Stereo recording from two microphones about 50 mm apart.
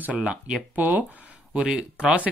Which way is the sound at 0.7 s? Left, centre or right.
Right.